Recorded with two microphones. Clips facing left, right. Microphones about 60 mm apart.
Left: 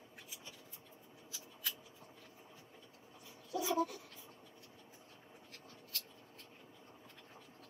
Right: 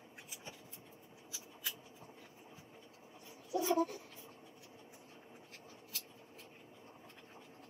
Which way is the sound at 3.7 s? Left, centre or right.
Right.